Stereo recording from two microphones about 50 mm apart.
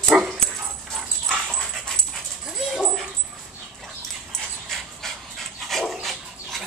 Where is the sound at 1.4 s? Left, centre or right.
Centre.